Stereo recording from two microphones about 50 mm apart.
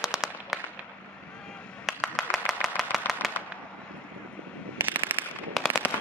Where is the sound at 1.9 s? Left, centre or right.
Centre.